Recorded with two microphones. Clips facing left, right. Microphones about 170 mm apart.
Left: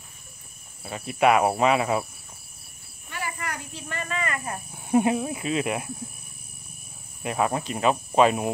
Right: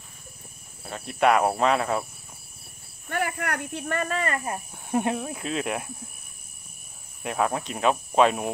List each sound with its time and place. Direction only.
0.8 s speech: 5° left (ahead or behind)
3.1 s a sound: 60° right (ahead or behind)
4.1 s speech: 35° right (ahead or behind)
4.8 s speech: 5° left (ahead or behind)
7.2 s speech: centre (ahead or behind)